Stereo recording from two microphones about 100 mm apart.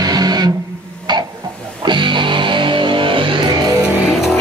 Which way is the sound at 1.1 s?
50° right (ahead or behind).